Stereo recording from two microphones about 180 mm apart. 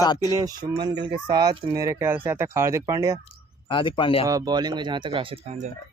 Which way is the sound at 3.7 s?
25° left (ahead or behind).